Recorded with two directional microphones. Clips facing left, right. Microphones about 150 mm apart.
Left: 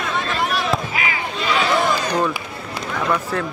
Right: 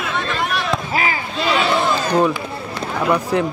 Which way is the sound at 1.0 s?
35° right (ahead or behind).